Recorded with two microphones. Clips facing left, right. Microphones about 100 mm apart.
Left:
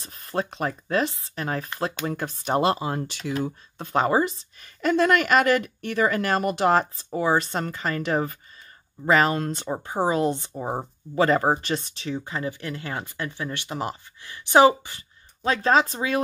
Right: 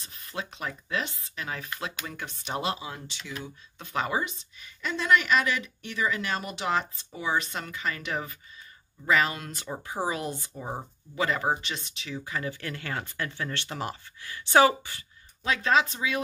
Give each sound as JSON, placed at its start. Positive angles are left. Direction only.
{"t": 0.0, "sound": "speech", "side_deg": 40}
{"t": 4.6, "sound": "speech", "side_deg": 50}
{"t": 12.4, "sound": "speech", "side_deg": 20}
{"t": 15.4, "sound": "speech", "side_deg": 35}